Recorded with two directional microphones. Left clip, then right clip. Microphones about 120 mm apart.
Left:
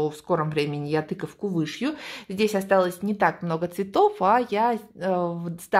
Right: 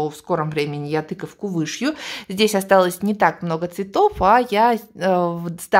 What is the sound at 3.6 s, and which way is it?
Speech, 5° right (ahead or behind).